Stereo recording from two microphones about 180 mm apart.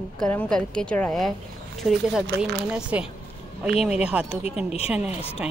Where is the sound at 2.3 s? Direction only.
75° right (ahead or behind).